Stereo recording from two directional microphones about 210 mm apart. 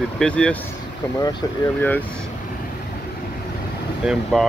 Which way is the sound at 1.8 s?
10° left (ahead or behind).